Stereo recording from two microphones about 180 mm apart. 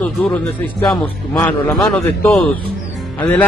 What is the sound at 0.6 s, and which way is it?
A man's voice, 10° left (ahead or behind).